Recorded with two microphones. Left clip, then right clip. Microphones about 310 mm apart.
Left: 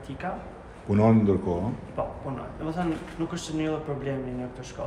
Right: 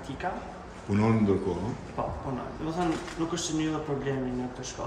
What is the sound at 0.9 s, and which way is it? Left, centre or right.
Speech, centre.